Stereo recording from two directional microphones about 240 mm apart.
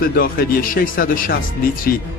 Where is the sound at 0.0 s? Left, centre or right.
Left.